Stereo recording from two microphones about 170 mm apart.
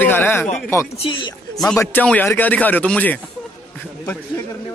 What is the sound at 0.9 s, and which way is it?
Speech, 30° left (ahead or behind).